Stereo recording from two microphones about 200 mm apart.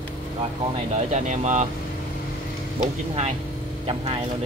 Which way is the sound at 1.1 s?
35° right (ahead or behind).